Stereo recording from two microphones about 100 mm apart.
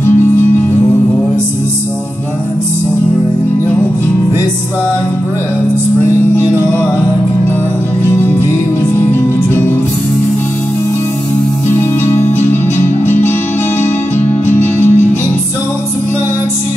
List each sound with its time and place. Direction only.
8.0 s music: 20° left (ahead or behind)
12.7 s music: 20° left (ahead or behind)